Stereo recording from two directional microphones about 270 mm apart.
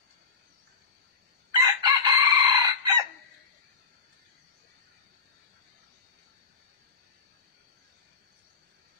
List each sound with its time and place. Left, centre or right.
1.5 s chicken: centre